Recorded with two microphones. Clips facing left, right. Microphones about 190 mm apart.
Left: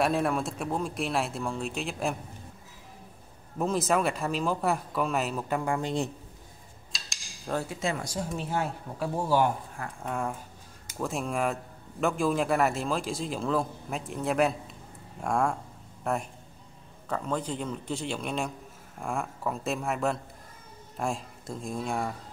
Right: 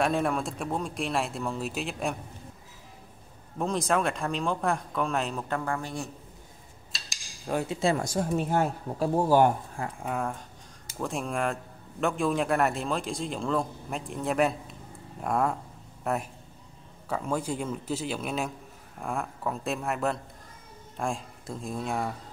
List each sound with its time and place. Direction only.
0.0 s speech: centre (ahead or behind)
3.5 s speech: 5° left (ahead or behind); by 6.0 s 20° left (ahead or behind)
6.9 s cutlery: centre (ahead or behind)
7.5 s speech: 25° right (ahead or behind)
7.9 s speech: 50° right (ahead or behind)
10.0 s a man's voice: centre (ahead or behind)